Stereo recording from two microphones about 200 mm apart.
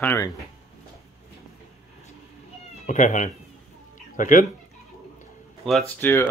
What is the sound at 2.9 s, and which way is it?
Speech, 40° left (ahead or behind).